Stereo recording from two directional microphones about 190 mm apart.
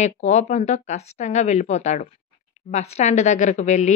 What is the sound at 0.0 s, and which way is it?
A woman's voice, 35° left (ahead or behind).